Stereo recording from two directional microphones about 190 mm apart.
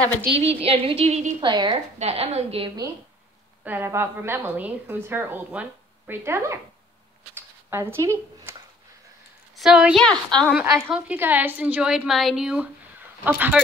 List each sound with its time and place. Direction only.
0.4 s a woman's voice: 30° right (ahead or behind)
1.4 s a woman's voice: 25° right (ahead or behind)
3.6 s a woman's voice: 10° right (ahead or behind)
7.7 s speech: 10° right (ahead or behind)
9.6 s a woman's voice: 5° right (ahead or behind)
10.5 s a woman's voice: 10° right (ahead or behind)